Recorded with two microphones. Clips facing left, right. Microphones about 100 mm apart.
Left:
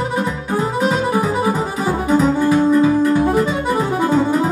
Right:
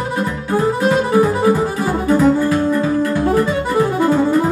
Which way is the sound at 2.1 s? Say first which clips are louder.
Right 1 dB; 15° left (ahead or behind).